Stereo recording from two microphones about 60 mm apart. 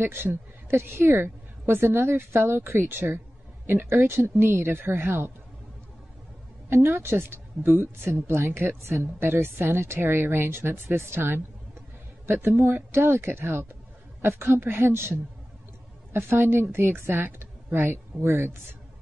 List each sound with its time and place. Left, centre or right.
0.0 s a woman's voice: right
6.7 s a woman's voice: right
12.3 s a woman's voice: right